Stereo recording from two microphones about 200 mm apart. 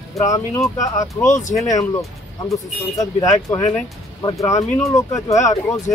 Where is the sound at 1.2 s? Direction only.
40° left (ahead or behind).